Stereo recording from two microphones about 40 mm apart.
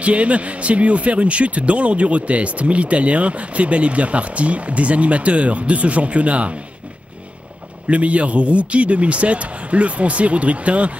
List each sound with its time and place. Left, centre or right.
0.0 s a man's voice: right
7.8 s a man's voice: right